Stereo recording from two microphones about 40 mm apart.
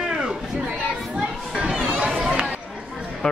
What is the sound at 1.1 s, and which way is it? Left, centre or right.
Children playing, right.